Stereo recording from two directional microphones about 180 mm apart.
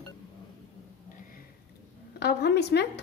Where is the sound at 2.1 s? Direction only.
65° left (ahead or behind).